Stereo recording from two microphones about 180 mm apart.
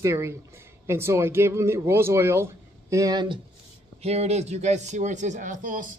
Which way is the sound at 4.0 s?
35° right (ahead or behind).